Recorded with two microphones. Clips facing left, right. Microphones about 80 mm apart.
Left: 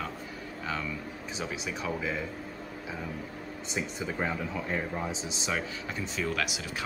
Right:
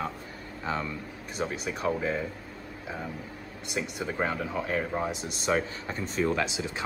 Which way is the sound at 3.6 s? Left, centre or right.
Right.